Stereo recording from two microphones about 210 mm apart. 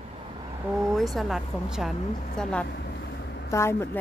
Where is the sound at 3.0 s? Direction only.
55° left (ahead or behind).